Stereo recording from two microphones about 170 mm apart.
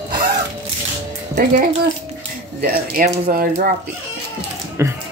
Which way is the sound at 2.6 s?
50° right (ahead or behind).